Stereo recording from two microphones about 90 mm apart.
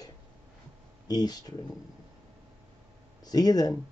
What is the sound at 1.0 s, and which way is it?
Speech, 45° left (ahead or behind).